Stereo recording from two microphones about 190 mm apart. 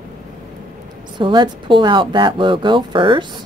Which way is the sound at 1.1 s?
25° right (ahead or behind).